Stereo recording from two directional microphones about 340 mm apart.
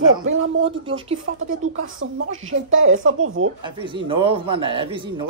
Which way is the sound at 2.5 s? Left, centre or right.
Right.